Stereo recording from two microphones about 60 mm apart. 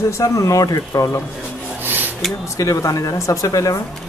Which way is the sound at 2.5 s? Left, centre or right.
Left.